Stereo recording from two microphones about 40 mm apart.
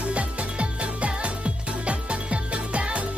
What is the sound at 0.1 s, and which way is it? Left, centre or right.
Music, right.